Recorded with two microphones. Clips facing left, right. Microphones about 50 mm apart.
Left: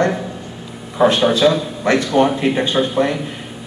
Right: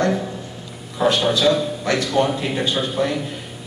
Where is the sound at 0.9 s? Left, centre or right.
Left.